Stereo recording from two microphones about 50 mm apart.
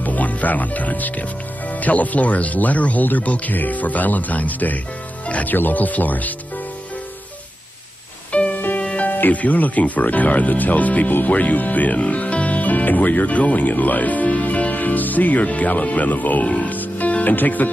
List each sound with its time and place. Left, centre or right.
0.0 s speech: left
8.3 s music: left
8.5 s music: left
8.8 s music: left
9.1 s speech: left
16.7 s music: left